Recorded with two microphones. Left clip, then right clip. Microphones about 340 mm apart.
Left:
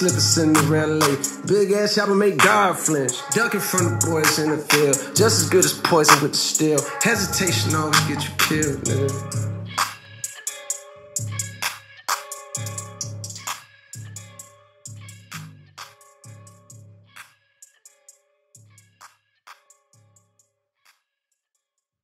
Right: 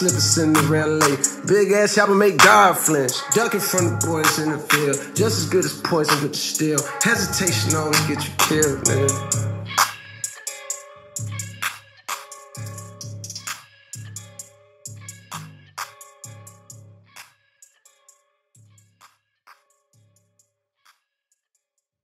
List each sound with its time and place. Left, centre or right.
0.0 s music: centre
1.9 s speech: centre
4.0 s music: centre
10.0 s music: centre
10.5 s music: centre
12.1 s music: centre
15.2 s turkey: centre
16.2 s music: centre
19.5 s music: centre